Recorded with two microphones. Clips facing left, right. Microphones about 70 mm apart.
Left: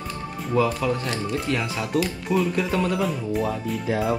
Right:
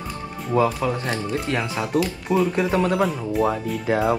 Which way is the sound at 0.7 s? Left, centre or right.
Right.